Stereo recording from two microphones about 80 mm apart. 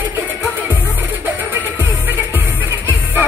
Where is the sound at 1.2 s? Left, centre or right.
Right.